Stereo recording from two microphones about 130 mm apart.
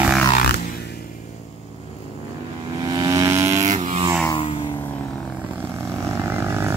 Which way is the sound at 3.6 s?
70° right (ahead or behind).